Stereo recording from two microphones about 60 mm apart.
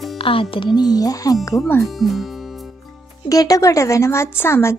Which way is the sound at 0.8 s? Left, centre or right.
Left.